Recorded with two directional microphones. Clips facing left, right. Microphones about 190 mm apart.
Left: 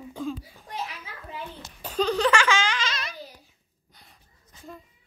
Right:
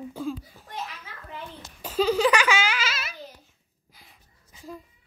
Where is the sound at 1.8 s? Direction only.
5° right (ahead or behind).